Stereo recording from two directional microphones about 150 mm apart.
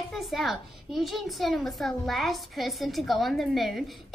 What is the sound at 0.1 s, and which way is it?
A woman's voice, centre (ahead or behind).